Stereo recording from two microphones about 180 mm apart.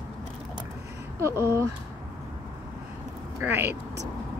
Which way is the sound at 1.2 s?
15° right (ahead or behind).